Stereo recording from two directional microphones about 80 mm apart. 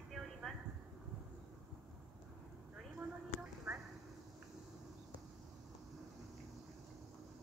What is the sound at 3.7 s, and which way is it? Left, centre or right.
Clip-clop, right.